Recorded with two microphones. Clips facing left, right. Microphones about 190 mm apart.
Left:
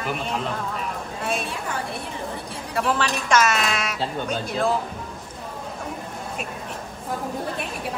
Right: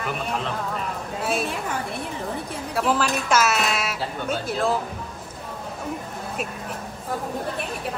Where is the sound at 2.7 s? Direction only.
5° right (ahead or behind).